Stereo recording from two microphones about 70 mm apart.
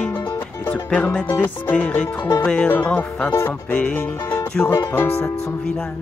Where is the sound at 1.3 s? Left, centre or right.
Left.